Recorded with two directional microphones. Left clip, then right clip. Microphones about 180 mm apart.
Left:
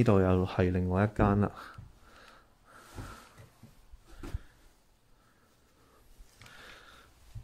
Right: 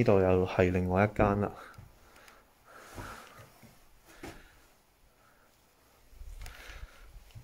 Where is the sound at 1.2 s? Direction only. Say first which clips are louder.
Right 1 dB; 20° left (ahead or behind).